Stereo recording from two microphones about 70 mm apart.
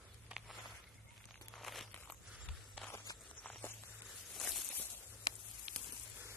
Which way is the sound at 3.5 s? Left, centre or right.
Centre.